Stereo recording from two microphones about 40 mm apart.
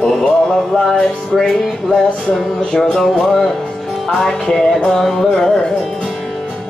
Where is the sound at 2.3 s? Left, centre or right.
Centre.